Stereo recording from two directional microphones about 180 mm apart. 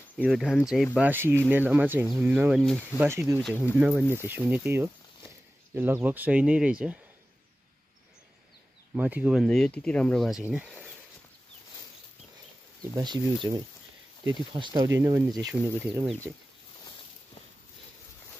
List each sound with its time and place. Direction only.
0.2 s speech: 5° right (ahead or behind)
3.1 s speech: 15° right (ahead or behind)
8.9 s speech: 10° right (ahead or behind)
12.9 s speech: 25° right (ahead or behind)
15.6 s speech: 5° right (ahead or behind)